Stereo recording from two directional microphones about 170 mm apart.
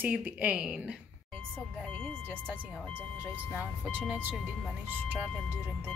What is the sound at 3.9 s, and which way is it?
Speech, 10° right (ahead or behind).